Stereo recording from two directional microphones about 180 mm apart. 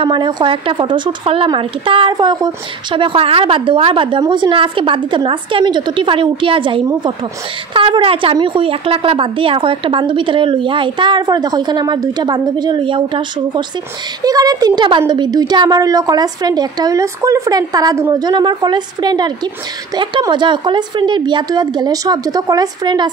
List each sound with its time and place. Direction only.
0.0 s speech: 25° right (ahead or behind)